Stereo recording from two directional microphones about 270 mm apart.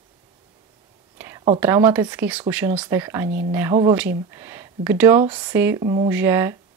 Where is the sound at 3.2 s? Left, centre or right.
Right.